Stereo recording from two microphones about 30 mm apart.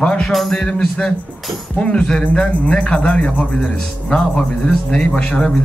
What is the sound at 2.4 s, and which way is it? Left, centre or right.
A man's voice, left.